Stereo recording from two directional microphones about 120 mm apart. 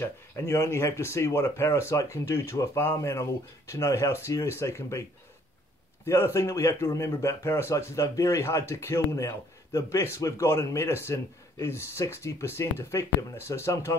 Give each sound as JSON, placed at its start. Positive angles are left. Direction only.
{"t": 0.0, "sound": "speech", "side_deg": 20}
{"t": 6.0, "sound": "speech", "side_deg": 20}